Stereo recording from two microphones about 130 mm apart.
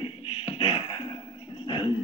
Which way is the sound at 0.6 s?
45° left (ahead or behind).